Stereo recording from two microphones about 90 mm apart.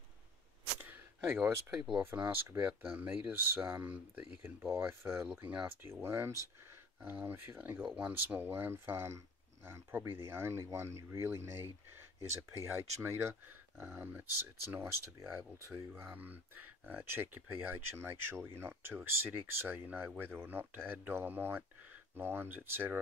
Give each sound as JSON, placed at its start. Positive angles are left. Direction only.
{"t": 0.7, "sound": "a sound", "side_deg": -25}
{"t": 2.1, "sound": "speech", "side_deg": -30}
{"t": 4.4, "sound": "speech", "side_deg": -25}
{"t": 5.4, "sound": "speech", "side_deg": -15}
{"t": 5.8, "sound": "speech", "side_deg": -25}